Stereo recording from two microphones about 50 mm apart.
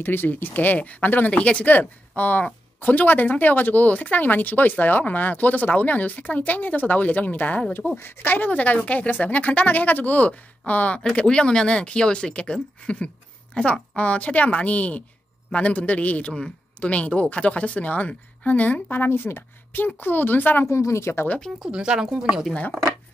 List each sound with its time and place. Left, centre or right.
0.0 s speech: left
1.7 s speech: left
7.9 s speech: left
11.0 s a man's voice: centre
13.6 s a man's voice: left
18.9 s speech: left
20.6 s speech: left
21.6 s speech: centre